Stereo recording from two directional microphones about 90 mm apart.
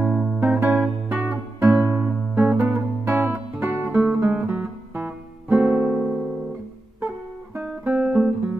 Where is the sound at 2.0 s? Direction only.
10° right (ahead or behind).